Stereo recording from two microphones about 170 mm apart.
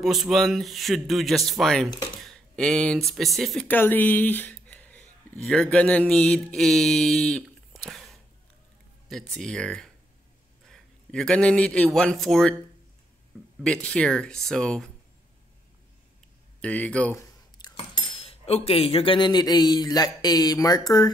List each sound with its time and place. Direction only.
0.0 s speech: centre (ahead or behind)
9.3 s a man's voice: 5° left (ahead or behind)
13.8 s speech: 5° left (ahead or behind)
16.6 s speech: 5° left (ahead or behind)
17.6 s a sound: 25° left (ahead or behind)
18.1 s speech: 35° left (ahead or behind)